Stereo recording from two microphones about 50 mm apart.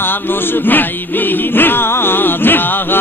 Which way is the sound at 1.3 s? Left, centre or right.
Left.